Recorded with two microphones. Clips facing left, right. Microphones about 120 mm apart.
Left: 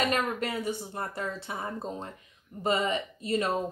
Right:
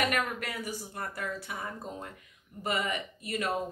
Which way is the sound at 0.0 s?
25° left (ahead or behind).